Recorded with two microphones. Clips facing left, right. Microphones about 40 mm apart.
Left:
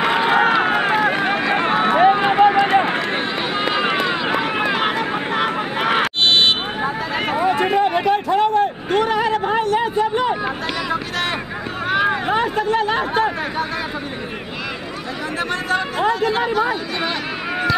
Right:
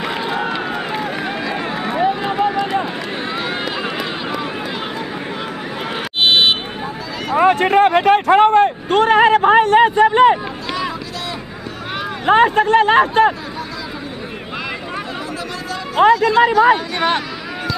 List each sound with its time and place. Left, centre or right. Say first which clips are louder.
0.0 s run: left 5 dB; left
0.6 s run: left 6 dB; left
6.2 s buzzer: right 3 dB; centre
7.6 s a sound: right 5 dB; right
12.3 s a sound: right 6 dB; right
16.0 s speech: right 11 dB; right